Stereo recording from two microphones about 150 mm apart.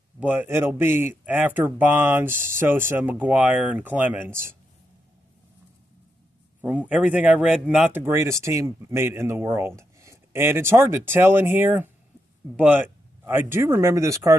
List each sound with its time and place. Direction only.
0.2 s speech: 10° right (ahead or behind)
6.6 s speech: 10° right (ahead or behind)